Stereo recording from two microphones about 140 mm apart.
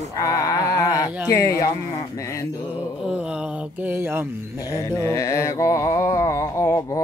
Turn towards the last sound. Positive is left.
turn(degrees=20)  # may be behind; listen again after turning